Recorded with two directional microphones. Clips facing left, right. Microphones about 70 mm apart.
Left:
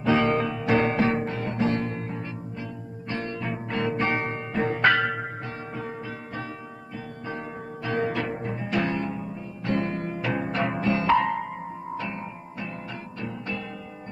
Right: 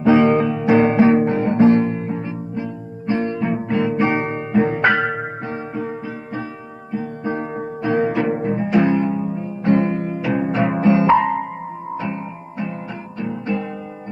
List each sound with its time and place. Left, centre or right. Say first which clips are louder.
0.0 s guitar: right 8 dB; centre
4.6 s music: right 5 dB; centre
6.9 s music: right 12 dB; right
9.9 s music: right 7 dB; centre